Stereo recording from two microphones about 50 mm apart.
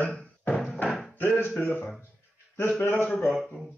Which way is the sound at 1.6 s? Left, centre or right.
Left.